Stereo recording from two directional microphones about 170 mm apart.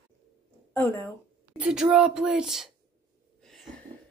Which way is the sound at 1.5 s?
5° right (ahead or behind).